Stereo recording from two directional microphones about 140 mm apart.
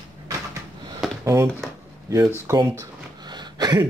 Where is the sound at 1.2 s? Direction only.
20° right (ahead or behind).